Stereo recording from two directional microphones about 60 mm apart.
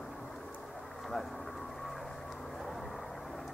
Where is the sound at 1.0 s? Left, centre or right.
Centre.